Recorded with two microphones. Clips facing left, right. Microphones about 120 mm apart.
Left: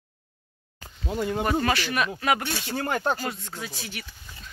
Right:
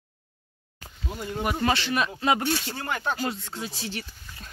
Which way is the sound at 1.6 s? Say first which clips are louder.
Even; 25° right (ahead or behind).